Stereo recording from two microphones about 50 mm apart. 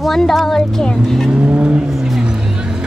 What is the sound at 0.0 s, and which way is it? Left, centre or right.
Speech, centre.